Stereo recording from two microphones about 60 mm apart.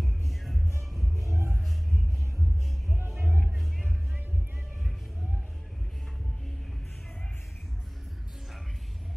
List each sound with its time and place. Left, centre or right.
0.0 s music: centre
1.1 s music: right
3.2 s music: right